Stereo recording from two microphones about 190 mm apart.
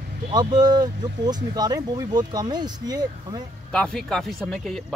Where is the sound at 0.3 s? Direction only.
20° right (ahead or behind).